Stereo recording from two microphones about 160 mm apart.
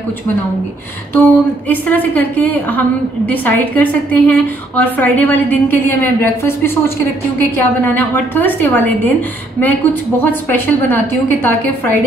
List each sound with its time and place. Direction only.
1.1 s a woman's voice: 10° left (ahead or behind)
10.2 s a woman's voice: 10° left (ahead or behind)